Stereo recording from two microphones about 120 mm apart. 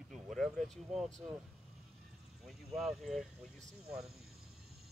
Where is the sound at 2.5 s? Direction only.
Centre (ahead or behind).